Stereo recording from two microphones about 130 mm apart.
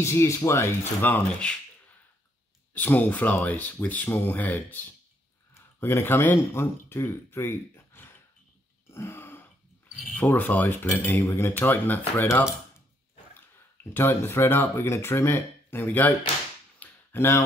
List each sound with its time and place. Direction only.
0.0 s speech: 20° left (ahead or behind)
2.7 s speech: 15° left (ahead or behind)
8.9 s burping: 20° left (ahead or behind)
10.1 s speech: 15° left (ahead or behind)
13.9 s speech: 15° left (ahead or behind)
16.8 s a sound: 15° left (ahead or behind)